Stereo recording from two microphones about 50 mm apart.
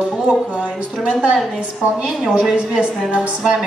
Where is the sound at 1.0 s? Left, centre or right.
Right.